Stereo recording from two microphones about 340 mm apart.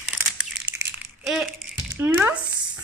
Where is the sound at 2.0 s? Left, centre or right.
Centre.